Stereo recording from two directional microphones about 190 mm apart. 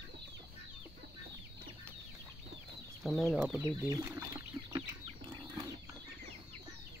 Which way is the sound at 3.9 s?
20° right (ahead or behind).